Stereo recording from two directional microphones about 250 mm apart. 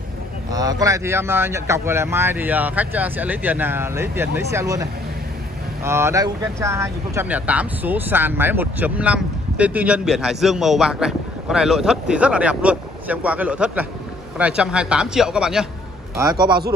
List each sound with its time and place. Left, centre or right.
0.5 s speech: centre
5.9 s speech: centre
16.2 s speech: centre